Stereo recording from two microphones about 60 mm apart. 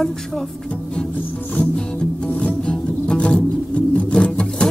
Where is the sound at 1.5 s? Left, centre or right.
Centre.